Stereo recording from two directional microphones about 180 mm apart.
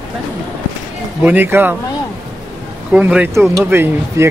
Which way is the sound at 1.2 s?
10° right (ahead or behind).